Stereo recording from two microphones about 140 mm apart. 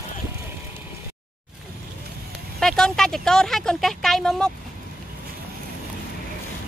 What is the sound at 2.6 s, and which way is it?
Speech, 5° left (ahead or behind).